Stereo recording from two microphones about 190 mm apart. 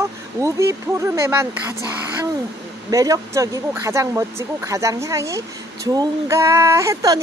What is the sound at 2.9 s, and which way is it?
Speech, 15° right (ahead or behind).